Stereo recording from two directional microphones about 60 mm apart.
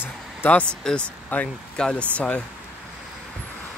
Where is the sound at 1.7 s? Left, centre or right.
Centre.